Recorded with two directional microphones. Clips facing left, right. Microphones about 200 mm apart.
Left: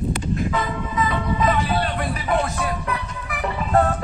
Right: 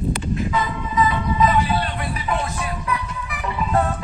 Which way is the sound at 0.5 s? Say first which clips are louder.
Right 2 dB; 50° left (ahead or behind).